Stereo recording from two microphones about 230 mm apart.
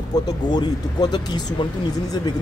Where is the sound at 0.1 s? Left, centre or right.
Centre.